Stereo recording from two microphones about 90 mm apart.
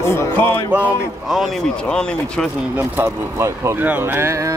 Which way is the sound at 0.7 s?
15° right (ahead or behind).